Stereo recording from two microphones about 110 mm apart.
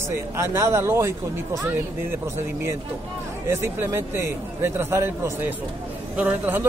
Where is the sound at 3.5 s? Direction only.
25° right (ahead or behind).